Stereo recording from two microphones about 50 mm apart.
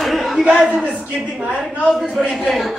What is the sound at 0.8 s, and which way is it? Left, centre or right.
A man's voice, right.